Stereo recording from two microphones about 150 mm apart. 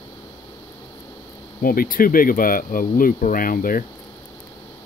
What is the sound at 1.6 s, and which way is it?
Speech, 70° left (ahead or behind).